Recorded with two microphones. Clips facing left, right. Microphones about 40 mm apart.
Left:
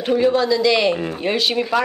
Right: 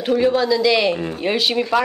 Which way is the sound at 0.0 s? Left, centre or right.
Centre.